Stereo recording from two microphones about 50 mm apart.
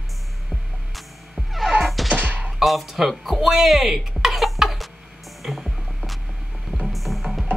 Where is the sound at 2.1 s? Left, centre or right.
Right.